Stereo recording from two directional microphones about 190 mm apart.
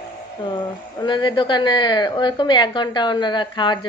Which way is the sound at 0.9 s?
25° left (ahead or behind).